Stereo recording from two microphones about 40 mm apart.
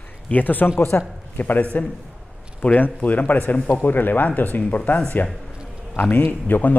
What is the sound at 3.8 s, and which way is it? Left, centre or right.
A man's voice, left.